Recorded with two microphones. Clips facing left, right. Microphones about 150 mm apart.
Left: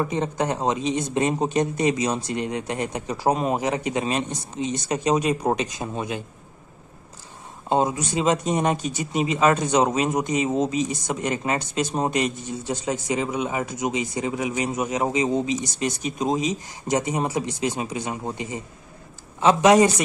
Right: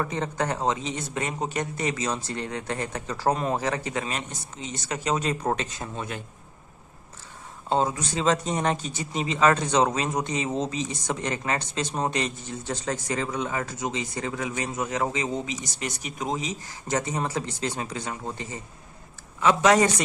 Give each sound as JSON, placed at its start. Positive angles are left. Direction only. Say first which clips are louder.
{"t": 0.0, "sound": "speech", "louder": "left 4 dB", "side_deg": 15}
{"t": 7.7, "sound": "speech", "louder": "left 3 dB", "side_deg": 10}